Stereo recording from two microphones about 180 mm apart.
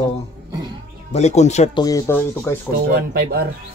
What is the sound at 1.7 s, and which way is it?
Speech, 20° left (ahead or behind).